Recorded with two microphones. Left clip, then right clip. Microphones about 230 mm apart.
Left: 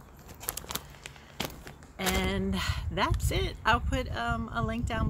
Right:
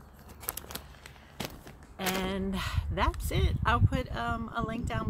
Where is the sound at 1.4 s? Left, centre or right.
Centre.